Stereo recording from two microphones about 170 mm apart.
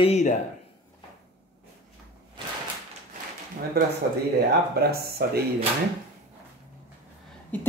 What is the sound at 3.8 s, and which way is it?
Speech, 70° right (ahead or behind).